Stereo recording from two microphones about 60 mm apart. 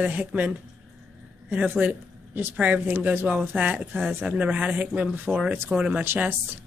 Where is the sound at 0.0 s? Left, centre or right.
Right.